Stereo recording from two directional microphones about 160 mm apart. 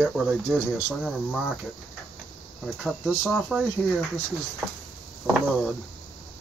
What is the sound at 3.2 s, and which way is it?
Speech, 5° right (ahead or behind).